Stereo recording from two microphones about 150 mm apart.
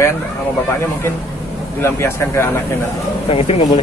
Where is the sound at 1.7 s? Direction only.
15° left (ahead or behind).